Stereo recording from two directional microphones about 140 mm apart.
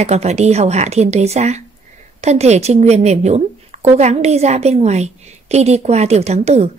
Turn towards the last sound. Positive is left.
turn(degrees=-50)  # may be behind; listen again after turning